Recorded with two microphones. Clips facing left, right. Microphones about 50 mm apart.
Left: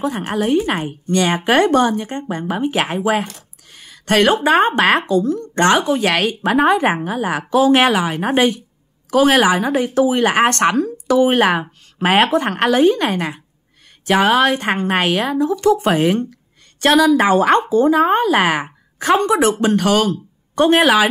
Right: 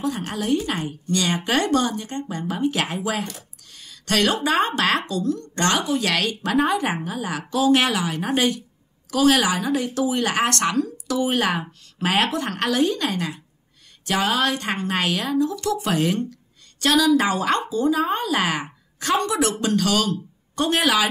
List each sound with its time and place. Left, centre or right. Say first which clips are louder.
0.0 s a woman's voice: left 6 dB; left